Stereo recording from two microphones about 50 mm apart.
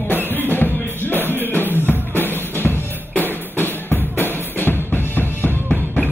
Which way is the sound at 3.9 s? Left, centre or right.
Left.